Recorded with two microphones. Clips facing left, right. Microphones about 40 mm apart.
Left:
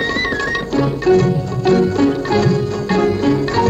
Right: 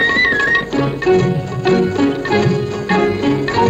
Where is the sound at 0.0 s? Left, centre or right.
Right.